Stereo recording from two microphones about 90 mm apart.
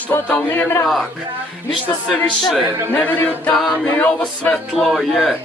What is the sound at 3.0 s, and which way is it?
A capella, 20° left (ahead or behind).